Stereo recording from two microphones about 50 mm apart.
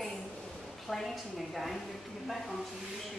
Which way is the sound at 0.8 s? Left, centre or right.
Centre.